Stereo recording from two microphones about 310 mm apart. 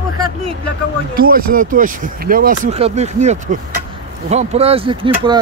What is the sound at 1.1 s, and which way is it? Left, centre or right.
Speech, right.